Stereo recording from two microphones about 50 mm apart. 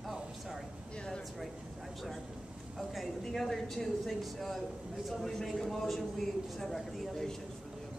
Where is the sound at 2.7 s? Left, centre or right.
Centre.